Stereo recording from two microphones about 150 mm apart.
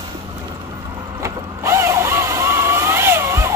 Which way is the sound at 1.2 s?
20° right (ahead or behind).